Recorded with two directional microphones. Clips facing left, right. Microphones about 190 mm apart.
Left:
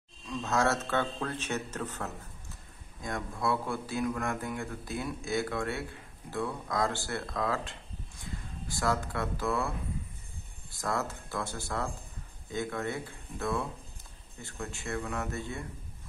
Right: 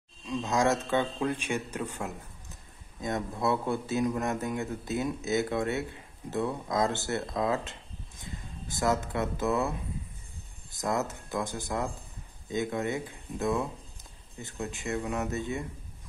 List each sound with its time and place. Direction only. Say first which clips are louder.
0.3 s a man's voice: right 2 dB; 15° right (ahead or behind)